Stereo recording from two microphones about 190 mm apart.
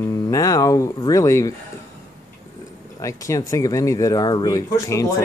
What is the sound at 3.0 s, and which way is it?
Speech, 15° left (ahead or behind).